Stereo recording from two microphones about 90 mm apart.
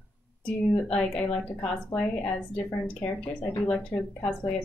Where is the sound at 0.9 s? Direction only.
10° left (ahead or behind).